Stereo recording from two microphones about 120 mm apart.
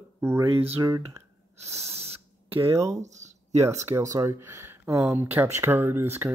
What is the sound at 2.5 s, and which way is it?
Speech, 25° right (ahead or behind).